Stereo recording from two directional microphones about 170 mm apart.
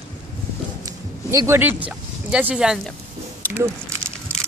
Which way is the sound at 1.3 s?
15° right (ahead or behind).